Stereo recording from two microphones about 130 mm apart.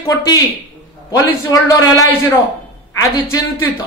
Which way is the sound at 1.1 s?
25° left (ahead or behind).